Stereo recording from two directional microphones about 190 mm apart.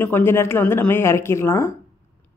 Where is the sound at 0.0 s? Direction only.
10° left (ahead or behind).